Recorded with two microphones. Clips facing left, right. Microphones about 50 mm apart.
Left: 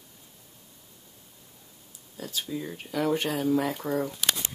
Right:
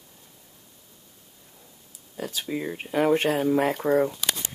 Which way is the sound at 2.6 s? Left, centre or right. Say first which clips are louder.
Right 6 dB; right.